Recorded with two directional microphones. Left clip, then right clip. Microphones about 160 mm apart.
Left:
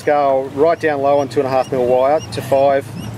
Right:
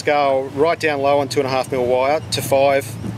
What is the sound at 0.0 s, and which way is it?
Speech, 30° right (ahead or behind).